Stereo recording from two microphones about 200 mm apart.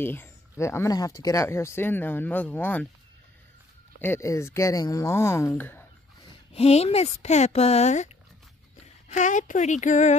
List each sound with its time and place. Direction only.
0.0 s speech: 10° left (ahead or behind)
4.0 s speech: 15° left (ahead or behind)
6.5 s speech: 30° left (ahead or behind)
9.1 s speech: 40° left (ahead or behind)